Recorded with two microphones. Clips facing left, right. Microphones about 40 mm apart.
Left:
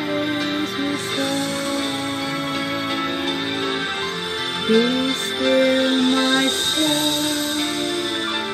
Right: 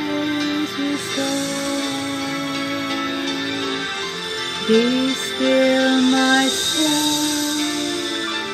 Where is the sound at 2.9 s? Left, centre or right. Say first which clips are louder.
Even; left.